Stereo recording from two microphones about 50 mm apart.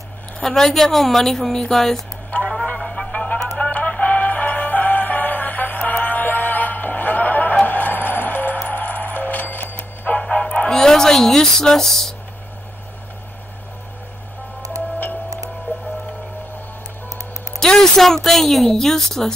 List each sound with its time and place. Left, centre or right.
0.4 s a woman's voice: centre
2.8 s music: centre
3.1 s music: left
10.7 s speech: centre
17.6 s a woman's voice: centre